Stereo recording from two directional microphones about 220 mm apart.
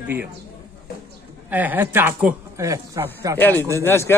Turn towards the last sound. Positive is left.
turn(degrees=10)  # may be behind; listen again after turning